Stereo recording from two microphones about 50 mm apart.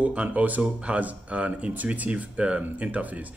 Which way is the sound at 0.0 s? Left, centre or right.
Right.